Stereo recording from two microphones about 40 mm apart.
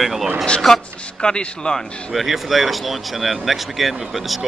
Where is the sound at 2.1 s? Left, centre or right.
Centre.